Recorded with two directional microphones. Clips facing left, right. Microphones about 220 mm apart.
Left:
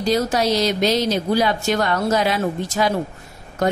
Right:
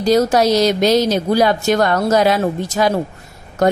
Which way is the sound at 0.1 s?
45° right (ahead or behind).